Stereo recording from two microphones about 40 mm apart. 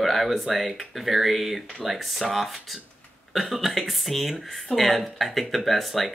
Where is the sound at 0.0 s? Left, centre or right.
Centre.